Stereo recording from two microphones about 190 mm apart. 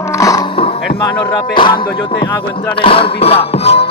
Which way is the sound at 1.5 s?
25° left (ahead or behind).